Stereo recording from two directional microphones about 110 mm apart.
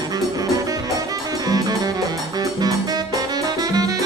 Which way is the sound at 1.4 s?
35° right (ahead or behind).